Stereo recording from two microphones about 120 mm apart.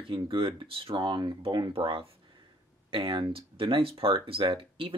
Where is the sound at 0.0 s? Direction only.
45° right (ahead or behind).